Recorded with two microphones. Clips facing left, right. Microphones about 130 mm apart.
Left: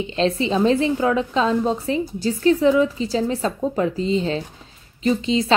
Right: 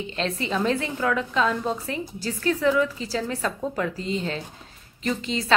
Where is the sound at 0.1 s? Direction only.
25° left (ahead or behind).